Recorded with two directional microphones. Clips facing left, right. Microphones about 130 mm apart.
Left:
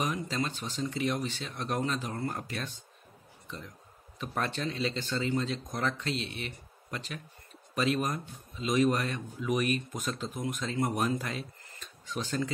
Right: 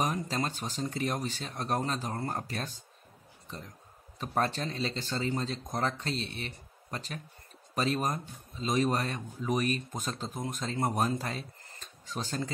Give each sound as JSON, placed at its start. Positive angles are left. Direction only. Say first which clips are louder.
{"t": 0.0, "sound": "speech", "louder": "right 1 dB", "side_deg": -40}